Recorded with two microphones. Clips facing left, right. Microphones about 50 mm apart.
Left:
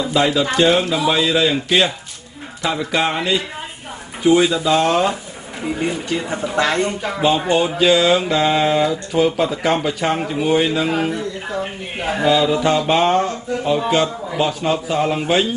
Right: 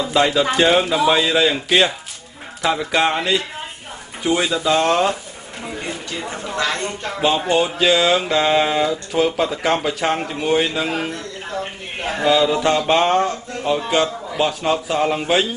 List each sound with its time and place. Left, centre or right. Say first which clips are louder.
0.0 s music: even; centre
5.6 s speech: left 6 dB; centre
7.0 s music: left 2 dB; centre